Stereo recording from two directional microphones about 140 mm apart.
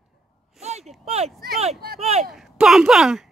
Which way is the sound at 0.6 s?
50° right (ahead or behind).